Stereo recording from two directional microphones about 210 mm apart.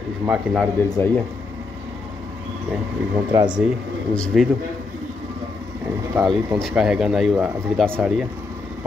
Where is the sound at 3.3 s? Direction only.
20° right (ahead or behind).